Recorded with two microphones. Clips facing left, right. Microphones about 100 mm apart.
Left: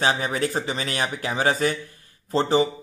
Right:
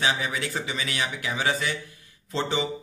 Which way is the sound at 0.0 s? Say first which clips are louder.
Left 4 dB; 40° left (ahead or behind).